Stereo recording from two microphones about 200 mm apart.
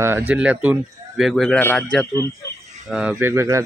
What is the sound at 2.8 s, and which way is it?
Speech, 5° right (ahead or behind).